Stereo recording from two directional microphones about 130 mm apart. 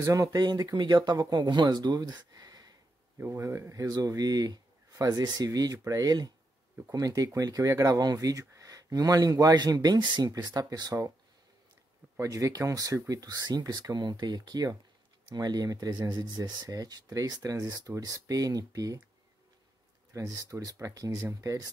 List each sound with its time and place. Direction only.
0.0 s speech: 25° right (ahead or behind)
3.2 s speech: 20° right (ahead or behind)
12.2 s speech: 25° right (ahead or behind)
20.1 s speech: 25° right (ahead or behind)